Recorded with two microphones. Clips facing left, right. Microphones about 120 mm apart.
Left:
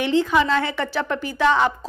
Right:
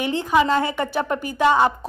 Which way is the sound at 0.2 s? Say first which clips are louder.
Right 1 dB; 15° right (ahead or behind).